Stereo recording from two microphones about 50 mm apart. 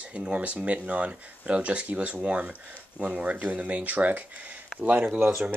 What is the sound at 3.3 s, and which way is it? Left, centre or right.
Speech, right.